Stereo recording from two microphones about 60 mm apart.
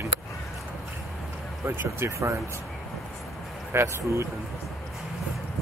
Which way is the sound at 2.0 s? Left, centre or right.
Right.